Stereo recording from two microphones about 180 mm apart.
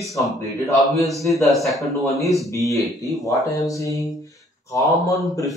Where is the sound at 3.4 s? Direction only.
20° left (ahead or behind).